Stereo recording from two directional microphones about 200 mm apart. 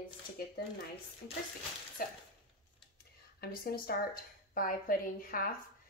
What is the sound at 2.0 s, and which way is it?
Speech, 45° left (ahead or behind).